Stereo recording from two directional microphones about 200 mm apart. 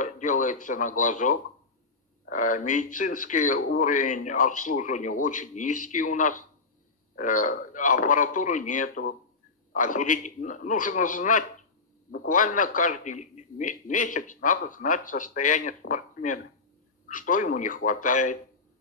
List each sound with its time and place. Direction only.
0.0 s a man's voice: 40° left (ahead or behind)